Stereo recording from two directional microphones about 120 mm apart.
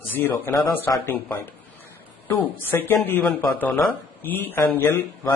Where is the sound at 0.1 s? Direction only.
20° left (ahead or behind).